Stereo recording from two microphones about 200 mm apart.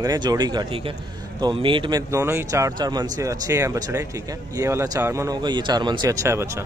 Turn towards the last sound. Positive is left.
turn(degrees=-15)  # may be behind; listen again after turning